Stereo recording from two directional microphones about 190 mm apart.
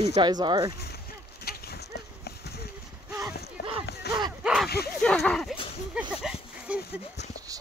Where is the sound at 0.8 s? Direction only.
55° left (ahead or behind).